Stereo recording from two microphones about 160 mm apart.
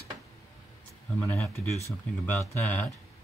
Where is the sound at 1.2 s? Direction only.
15° left (ahead or behind).